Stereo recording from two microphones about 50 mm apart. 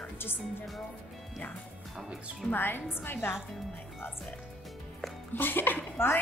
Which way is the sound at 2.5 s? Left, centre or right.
Left.